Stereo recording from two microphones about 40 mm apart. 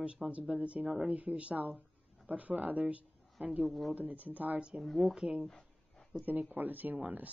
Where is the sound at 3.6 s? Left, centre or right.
Centre.